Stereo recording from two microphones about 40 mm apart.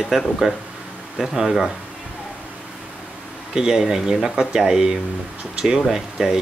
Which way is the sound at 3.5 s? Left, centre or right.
Centre.